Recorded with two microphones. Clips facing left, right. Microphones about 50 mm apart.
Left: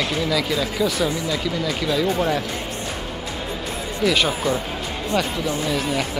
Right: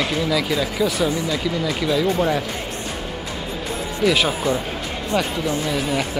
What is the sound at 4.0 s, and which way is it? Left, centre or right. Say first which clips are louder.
Speech: right 1 dB; centre.